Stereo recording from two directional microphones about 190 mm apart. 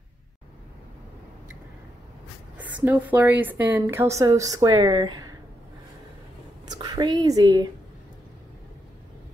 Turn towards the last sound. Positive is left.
turn(degrees=-20)  # may be behind; listen again after turning